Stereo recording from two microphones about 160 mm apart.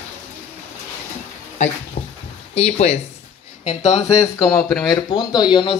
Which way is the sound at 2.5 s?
45° left (ahead or behind).